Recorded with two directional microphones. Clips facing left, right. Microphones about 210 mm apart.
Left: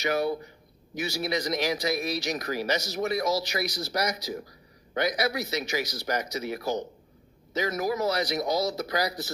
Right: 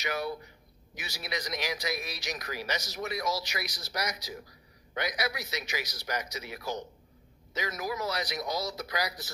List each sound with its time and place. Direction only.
0.0 s speech: 30° left (ahead or behind)
7.5 s speech: 30° left (ahead or behind)